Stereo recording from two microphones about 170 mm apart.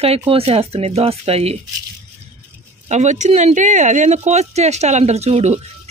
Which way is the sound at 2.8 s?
45° right (ahead or behind).